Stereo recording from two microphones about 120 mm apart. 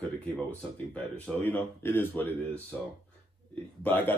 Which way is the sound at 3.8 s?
15° left (ahead or behind).